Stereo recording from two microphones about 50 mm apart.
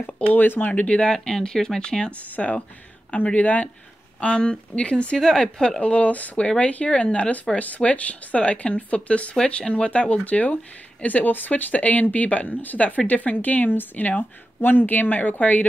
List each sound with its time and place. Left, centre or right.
0.3 s speech: left
0.7 s speech: left
1.1 s speech: centre
2.3 s speech: left
4.2 s speech: left
5.8 s speech: left